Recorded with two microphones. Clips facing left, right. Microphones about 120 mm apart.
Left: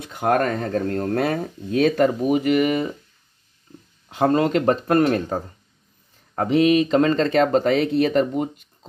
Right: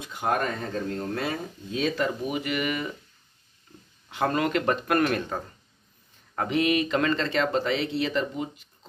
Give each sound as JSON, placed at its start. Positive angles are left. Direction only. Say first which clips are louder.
{"t": 0.1, "sound": "speech", "louder": "left 7 dB", "side_deg": 60}
{"t": 2.0, "sound": "speech", "louder": "left 10 dB", "side_deg": 40}
{"t": 4.1, "sound": "speech", "louder": "left 7 dB", "side_deg": 35}